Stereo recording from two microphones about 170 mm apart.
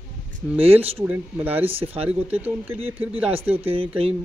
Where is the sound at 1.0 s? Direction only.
10° right (ahead or behind).